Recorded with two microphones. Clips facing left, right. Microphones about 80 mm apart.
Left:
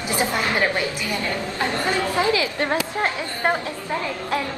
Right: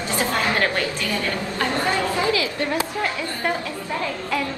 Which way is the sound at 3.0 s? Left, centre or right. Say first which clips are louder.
Left 2 dB; left.